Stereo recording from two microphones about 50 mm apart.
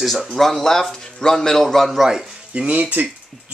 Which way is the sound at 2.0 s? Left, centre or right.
Centre.